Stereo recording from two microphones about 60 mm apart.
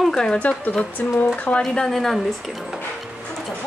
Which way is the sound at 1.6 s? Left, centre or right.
Centre.